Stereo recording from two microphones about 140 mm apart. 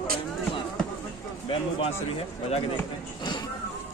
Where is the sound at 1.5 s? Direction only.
40° left (ahead or behind).